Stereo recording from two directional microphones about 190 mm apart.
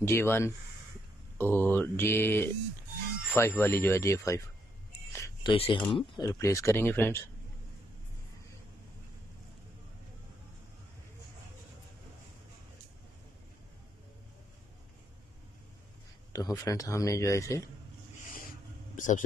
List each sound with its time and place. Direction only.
0.0 s speech: 15° left (ahead or behind)
5.1 s a sound: 15° left (ahead or behind)
5.5 s speech: 25° left (ahead or behind); by 7.2 s 10° left (ahead or behind)
16.3 s speech: 20° left (ahead or behind)
18.9 s speech: 45° left (ahead or behind)